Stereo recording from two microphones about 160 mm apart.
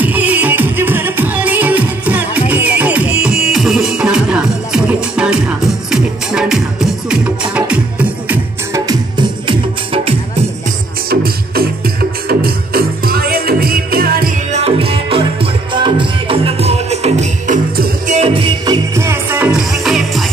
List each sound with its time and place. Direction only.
0.0 s music: 10° right (ahead or behind)
8.7 s music: 25° right (ahead or behind)
11.1 s music: 70° right (ahead or behind)
14.5 s music: 40° right (ahead or behind)
18.9 s music: 15° right (ahead or behind); by 20.2 s centre (ahead or behind)